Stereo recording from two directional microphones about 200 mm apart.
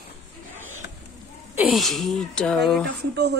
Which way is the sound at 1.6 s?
Centre (ahead or behind).